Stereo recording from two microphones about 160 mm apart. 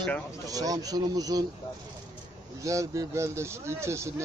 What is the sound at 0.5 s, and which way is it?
Speech, 20° right (ahead or behind).